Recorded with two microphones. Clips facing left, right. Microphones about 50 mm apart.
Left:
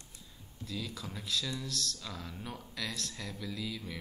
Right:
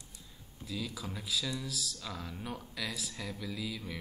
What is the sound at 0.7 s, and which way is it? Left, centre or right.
Speech, centre.